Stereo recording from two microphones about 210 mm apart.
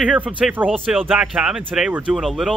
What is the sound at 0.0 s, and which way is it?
Speech, 5° right (ahead or behind).